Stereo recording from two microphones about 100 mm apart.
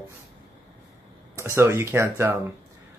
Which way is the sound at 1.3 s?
30° right (ahead or behind).